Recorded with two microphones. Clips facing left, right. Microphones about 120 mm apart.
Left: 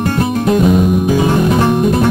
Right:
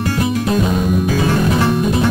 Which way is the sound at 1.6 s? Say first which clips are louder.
Left 4 dB; 55° left (ahead or behind).